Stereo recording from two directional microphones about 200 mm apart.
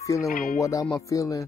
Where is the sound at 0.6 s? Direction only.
15° left (ahead or behind).